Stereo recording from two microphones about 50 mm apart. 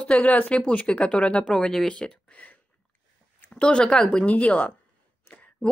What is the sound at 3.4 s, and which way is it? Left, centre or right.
Speech, left.